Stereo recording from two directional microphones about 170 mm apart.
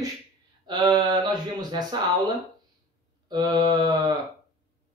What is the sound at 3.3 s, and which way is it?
Speech, 25° right (ahead or behind).